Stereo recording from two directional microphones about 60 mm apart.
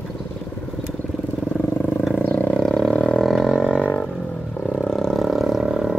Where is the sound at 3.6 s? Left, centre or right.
Centre.